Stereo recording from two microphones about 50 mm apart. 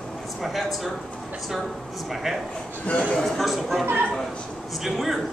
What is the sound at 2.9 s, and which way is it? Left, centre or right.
Speech, left.